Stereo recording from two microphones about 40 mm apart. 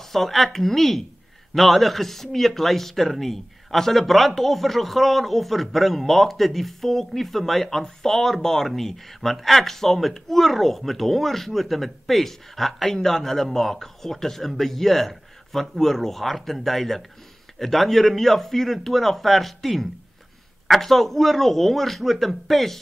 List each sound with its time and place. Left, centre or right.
0.0 s a woman's voice: centre